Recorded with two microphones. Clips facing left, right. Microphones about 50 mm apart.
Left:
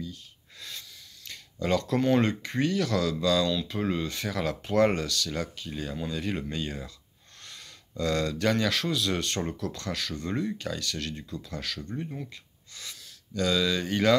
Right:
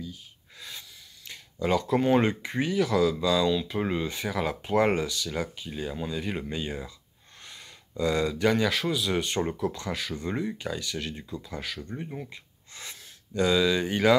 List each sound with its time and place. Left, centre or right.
0.0 s speech: centre
12.3 s speech: right